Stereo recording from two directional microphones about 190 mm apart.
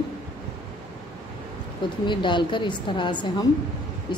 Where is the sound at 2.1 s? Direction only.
25° left (ahead or behind).